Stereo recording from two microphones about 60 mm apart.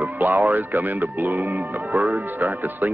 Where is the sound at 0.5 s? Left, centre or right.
Right.